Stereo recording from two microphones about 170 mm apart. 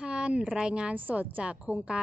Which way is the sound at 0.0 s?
5° right (ahead or behind).